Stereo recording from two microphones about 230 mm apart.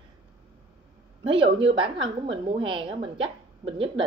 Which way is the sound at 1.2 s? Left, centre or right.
Right.